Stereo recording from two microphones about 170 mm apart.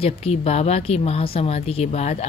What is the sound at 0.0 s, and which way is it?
Speech, 35° left (ahead or behind).